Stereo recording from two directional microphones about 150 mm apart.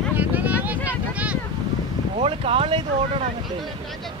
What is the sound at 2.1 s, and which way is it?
Speech, 40° right (ahead or behind).